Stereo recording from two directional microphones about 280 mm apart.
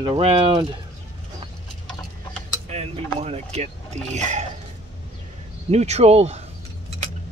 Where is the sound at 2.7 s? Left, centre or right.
Right.